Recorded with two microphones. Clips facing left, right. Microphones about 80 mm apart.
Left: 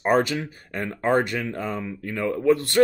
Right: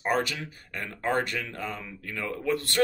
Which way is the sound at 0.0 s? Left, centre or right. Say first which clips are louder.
Left 7 dB; left.